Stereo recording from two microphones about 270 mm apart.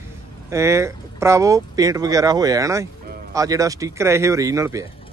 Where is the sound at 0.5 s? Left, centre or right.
Centre.